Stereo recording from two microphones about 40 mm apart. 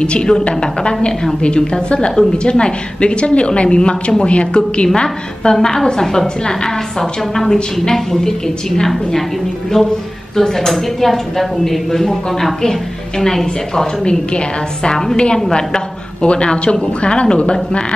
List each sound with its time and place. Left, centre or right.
0.0 s a woman's voice: left
4.9 s a woman's voice: centre
9.8 s a sound: centre
10.3 s a woman's voice: centre